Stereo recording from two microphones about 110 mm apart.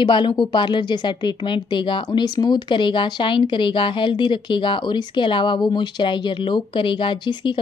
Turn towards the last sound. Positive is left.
turn(degrees=45)  # may be behind; listen again after turning